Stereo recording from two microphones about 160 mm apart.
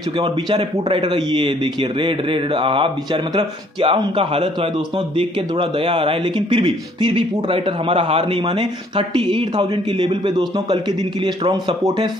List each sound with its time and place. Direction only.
0.2 s a man's voice: 30° right (ahead or behind)